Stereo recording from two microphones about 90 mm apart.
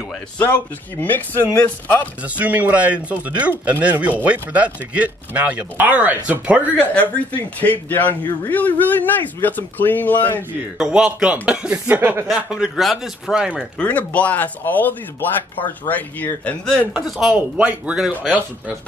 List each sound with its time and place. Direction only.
0.4 s a man's voice: 25° left (ahead or behind)
2.2 s speech: 15° right (ahead or behind)
6.8 s a man's voice: 15° left (ahead or behind)
10.8 s speech: 5° right (ahead or behind); by 12.3 s 20° right (ahead or behind)
12.3 s speech: 10° right (ahead or behind)
13.7 s a man's voice: 15° left (ahead or behind)
16.9 s speech: 5° right (ahead or behind)
17.3 s speech: 15° right (ahead or behind)